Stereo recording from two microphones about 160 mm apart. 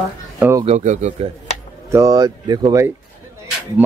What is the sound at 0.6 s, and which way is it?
Speech, 45° right (ahead or behind).